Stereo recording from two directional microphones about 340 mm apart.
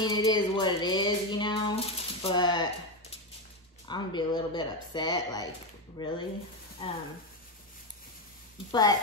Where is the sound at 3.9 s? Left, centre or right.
Centre.